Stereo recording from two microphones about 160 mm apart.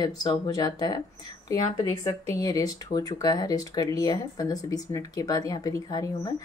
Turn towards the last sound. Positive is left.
turn(degrees=25)  # may be behind; listen again after turning